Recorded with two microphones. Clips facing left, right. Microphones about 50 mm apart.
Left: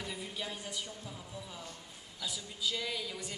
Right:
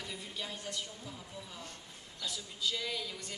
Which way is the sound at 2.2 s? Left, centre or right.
Centre.